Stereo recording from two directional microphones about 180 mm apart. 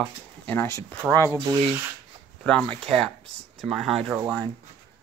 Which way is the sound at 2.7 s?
30° right (ahead or behind).